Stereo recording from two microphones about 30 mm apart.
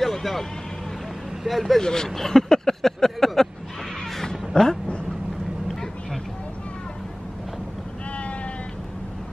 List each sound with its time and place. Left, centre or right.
0.0 s vehicle: centre
1.5 s speech: centre
1.8 s speech: left
2.0 s vehicle: centre
4.6 s speech: left